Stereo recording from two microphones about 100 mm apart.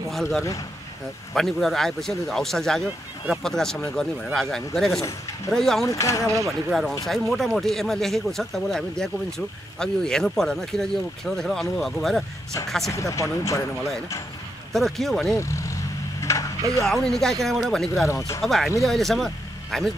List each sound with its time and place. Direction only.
0.1 s speech: centre (ahead or behind)
5.9 s speech: 35° left (ahead or behind)
6.7 s speech: centre (ahead or behind)
12.9 s speech: 30° left (ahead or behind)
14.7 s speech: centre (ahead or behind)
15.3 s vehicle: 30° left (ahead or behind)
16.8 s speech: 5° left (ahead or behind)
18.0 s speech: 30° left (ahead or behind)
18.4 s speech: centre (ahead or behind)